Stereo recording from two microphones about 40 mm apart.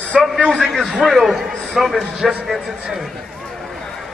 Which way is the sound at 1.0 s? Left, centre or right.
Centre.